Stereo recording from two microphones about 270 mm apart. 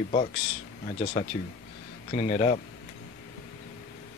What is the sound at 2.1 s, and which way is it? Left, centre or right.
Speech, left.